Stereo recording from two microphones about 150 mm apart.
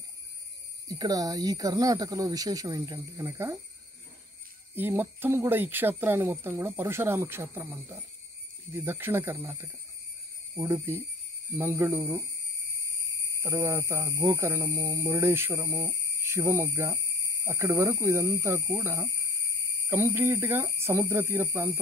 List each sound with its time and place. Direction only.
0.8 s speech: 25° right (ahead or behind)
4.7 s speech: 15° right (ahead or behind)
13.4 s speech: 20° right (ahead or behind)